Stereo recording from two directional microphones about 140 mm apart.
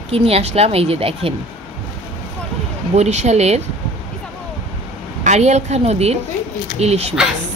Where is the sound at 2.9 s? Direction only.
55° right (ahead or behind).